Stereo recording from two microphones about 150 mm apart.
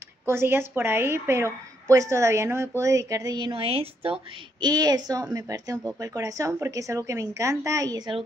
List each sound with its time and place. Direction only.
0.2 s a woman's voice: 15° right (ahead or behind)